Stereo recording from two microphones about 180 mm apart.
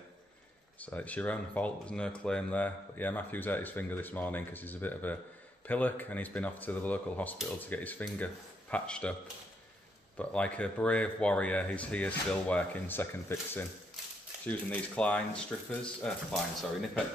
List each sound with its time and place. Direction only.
0.7 s speech: 10° left (ahead or behind)
10.1 s speech: 5° left (ahead or behind)